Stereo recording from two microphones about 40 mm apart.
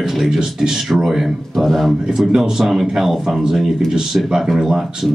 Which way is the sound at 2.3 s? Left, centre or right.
Centre.